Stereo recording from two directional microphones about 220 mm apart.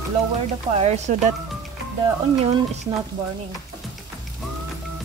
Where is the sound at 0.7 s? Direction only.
30° right (ahead or behind).